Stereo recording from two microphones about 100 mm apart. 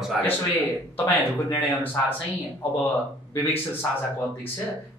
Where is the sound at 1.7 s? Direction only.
20° left (ahead or behind).